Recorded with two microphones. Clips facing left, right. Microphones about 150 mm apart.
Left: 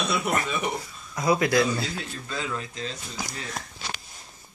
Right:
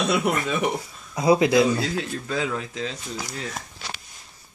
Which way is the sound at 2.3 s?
70° right (ahead or behind).